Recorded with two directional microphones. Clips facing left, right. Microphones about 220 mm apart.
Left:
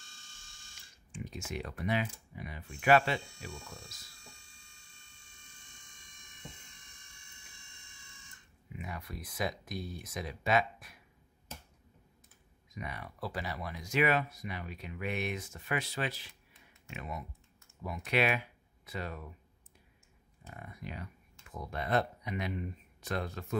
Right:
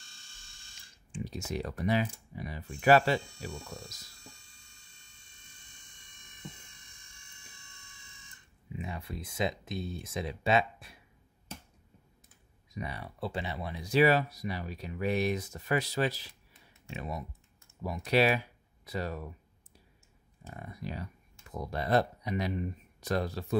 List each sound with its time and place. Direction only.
1.1 s speech: 35° right (ahead or behind)
8.7 s speech: 25° right (ahead or behind)
12.7 s speech: 30° right (ahead or behind)
20.4 s speech: 35° right (ahead or behind)